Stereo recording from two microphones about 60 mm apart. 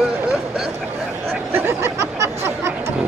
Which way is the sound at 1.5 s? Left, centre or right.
Right.